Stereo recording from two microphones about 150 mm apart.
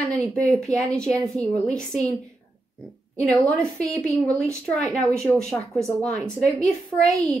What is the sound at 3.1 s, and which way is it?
Speech, 5° left (ahead or behind).